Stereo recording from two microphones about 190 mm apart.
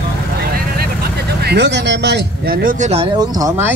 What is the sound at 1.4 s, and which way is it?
Speech, 65° right (ahead or behind).